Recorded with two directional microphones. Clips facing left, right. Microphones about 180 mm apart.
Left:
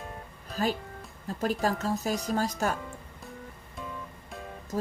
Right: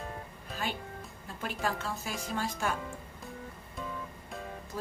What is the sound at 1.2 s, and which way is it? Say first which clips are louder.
Speech: left 7 dB; 40° left (ahead or behind).